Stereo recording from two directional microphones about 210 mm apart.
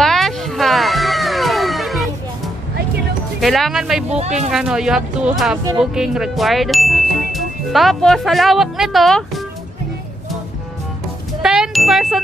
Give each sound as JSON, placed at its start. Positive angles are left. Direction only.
{"t": 0.0, "sound": "music", "side_deg": 0}
{"t": 3.3, "sound": "speech", "side_deg": 0}
{"t": 4.1, "sound": "speech", "side_deg": -30}
{"t": 4.5, "sound": "speech", "side_deg": -5}
{"t": 5.8, "sound": "music", "side_deg": -5}
{"t": 11.4, "sound": "ding", "side_deg": -5}